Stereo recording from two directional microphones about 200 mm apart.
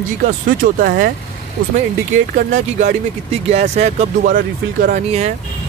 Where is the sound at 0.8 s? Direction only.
50° right (ahead or behind).